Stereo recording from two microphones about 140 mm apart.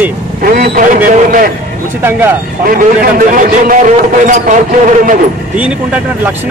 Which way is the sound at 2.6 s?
90° right.